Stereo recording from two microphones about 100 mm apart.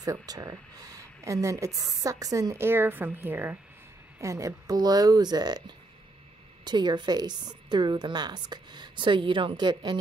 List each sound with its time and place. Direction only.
0.0 s speech: 35° right (ahead or behind); by 3.5 s 20° right (ahead or behind)
4.2 s speech: 30° right (ahead or behind)
6.6 s a woman's voice: 45° right (ahead or behind)